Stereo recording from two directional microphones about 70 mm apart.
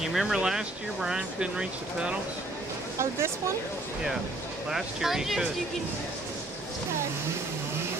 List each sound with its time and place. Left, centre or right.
0.0 s speech: centre
3.0 s speech: right
4.6 s speech: centre